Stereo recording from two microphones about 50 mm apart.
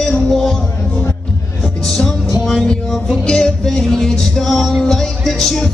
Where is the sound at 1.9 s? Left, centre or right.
Centre.